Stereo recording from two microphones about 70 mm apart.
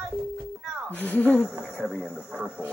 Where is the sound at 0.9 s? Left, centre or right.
Left.